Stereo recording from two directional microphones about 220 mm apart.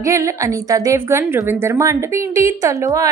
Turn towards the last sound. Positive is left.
turn(degrees=-15)  # may be behind; listen again after turning